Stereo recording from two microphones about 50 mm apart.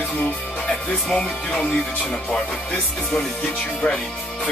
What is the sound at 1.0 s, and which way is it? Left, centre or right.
Music, centre.